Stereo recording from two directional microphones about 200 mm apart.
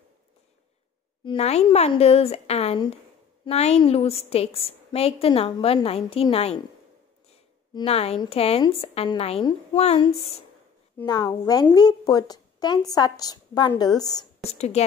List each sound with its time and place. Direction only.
1.2 s a woman's voice: 30° left (ahead or behind)
7.7 s a woman's voice: 30° left (ahead or behind)
14.4 s speech: 30° left (ahead or behind)